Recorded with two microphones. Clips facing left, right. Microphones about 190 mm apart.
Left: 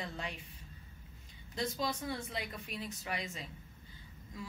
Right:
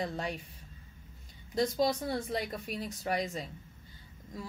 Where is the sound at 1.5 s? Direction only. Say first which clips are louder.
Right 8 dB; 40° right (ahead or behind).